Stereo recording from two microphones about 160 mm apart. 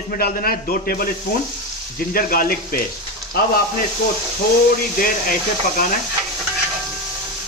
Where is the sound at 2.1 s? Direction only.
65° left (ahead or behind).